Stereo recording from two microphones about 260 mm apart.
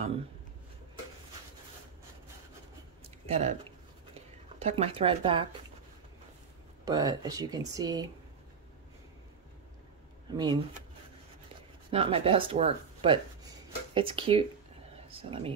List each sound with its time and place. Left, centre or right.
3.3 s speech: right
4.6 s speech: right
6.8 s speech: centre
10.3 s speech: centre
11.9 s speech: right